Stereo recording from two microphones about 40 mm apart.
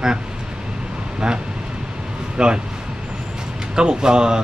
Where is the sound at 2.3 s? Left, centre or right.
Right.